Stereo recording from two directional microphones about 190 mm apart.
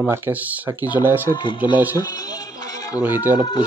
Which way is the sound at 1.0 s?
10° right (ahead or behind).